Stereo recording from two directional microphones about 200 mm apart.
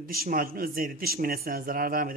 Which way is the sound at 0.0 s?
45° right (ahead or behind).